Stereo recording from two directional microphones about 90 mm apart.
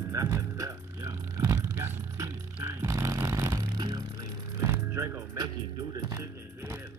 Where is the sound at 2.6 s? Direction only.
40° right (ahead or behind).